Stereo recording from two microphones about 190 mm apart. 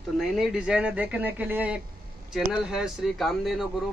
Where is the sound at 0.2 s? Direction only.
5° right (ahead or behind).